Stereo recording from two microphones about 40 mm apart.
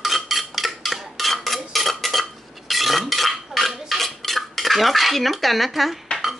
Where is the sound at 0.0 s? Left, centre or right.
Centre.